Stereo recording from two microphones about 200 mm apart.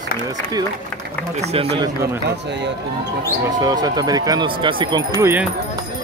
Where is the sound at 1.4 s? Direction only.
30° right (ahead or behind).